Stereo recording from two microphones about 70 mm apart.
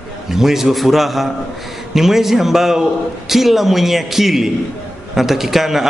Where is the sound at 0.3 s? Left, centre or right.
Centre.